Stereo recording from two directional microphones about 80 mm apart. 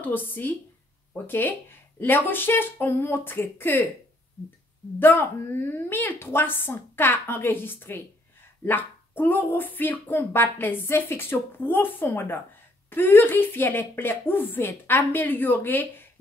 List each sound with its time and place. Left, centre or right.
0.0 s speech: left
4.9 s speech: left